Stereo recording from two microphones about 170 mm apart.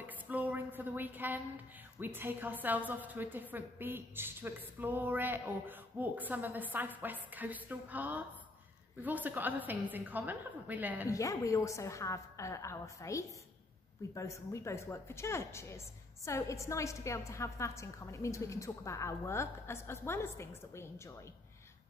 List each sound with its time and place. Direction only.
0.0 s a sound: 10° right (ahead or behind)
2.0 s a woman's voice: 10° right (ahead or behind)
11.1 s a woman's voice: 20° left (ahead or behind)